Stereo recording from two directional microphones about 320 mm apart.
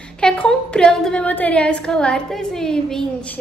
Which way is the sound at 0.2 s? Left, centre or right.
Centre.